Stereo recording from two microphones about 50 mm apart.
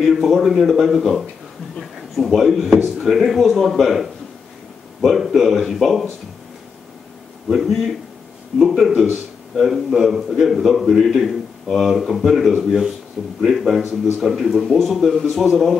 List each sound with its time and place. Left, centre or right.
0.0 s speech: centre
7.4 s speech: centre